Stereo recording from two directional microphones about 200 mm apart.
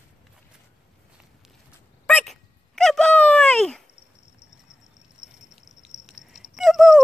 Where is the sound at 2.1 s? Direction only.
5° left (ahead or behind).